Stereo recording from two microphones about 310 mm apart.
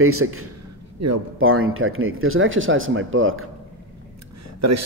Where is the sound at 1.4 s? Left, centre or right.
Right.